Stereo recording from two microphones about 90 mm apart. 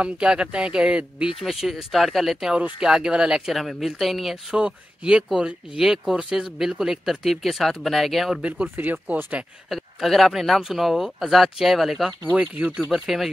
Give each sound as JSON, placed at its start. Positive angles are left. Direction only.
{"t": 0.0, "sound": "speech", "side_deg": -10}
{"t": 8.4, "sound": "speech", "side_deg": -15}
{"t": 9.7, "sound": "speech", "side_deg": 0}
{"t": 12.3, "sound": "speech", "side_deg": -15}
{"t": 12.9, "sound": "speech", "side_deg": -5}